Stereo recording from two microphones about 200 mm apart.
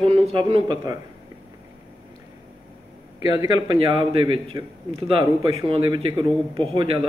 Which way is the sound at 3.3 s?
20° right (ahead or behind).